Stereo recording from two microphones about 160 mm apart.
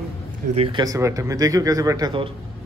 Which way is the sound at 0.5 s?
35° right (ahead or behind).